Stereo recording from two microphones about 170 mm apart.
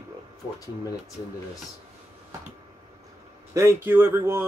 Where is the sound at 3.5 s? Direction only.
15° right (ahead or behind).